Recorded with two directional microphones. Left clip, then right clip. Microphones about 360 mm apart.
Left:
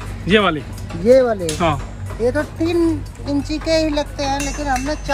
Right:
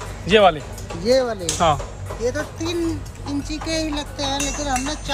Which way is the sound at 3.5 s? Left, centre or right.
Centre.